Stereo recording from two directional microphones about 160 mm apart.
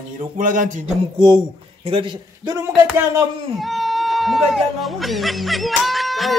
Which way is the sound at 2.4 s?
20° right (ahead or behind).